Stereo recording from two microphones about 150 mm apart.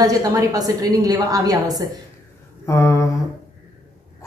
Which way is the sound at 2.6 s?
20° left (ahead or behind).